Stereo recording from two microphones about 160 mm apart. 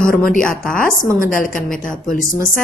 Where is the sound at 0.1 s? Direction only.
65° left (ahead or behind).